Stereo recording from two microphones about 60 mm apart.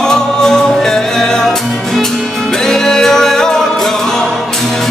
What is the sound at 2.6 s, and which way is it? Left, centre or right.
Music, centre.